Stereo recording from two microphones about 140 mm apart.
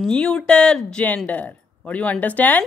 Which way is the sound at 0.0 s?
5° left (ahead or behind).